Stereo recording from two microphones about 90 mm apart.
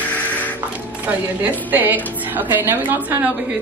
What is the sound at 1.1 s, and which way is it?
A woman's voice, 15° right (ahead or behind).